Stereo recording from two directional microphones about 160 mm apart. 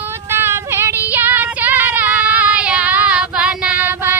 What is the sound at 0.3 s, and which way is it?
Child singing, 15° right (ahead or behind).